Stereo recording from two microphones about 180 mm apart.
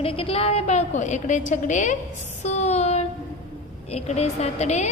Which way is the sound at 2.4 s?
40° left (ahead or behind).